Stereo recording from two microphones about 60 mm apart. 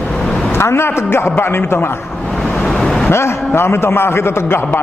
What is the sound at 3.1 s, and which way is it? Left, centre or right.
A man's voice, left.